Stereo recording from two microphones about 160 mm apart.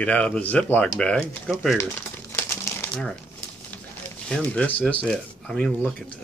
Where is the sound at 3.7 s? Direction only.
10° left (ahead or behind).